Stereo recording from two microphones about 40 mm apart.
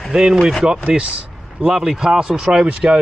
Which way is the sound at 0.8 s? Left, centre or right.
Right.